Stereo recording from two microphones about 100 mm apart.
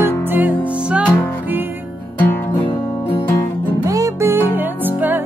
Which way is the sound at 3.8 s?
35° right (ahead or behind).